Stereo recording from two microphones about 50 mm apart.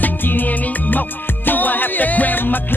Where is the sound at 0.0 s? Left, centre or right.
Left.